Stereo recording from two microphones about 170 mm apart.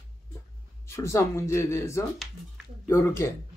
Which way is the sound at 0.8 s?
15° left (ahead or behind).